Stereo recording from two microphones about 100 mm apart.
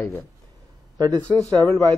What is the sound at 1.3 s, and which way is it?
Speech, 30° left (ahead or behind).